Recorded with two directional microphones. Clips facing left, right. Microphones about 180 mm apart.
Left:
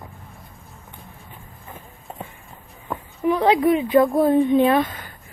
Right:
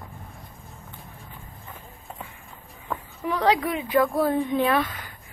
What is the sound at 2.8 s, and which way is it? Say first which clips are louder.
A woman's voice: left 8 dB; 15° left (ahead or behind).